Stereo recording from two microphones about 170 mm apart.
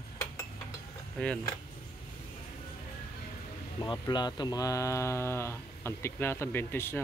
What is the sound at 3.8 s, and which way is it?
Speech, 25° left (ahead or behind).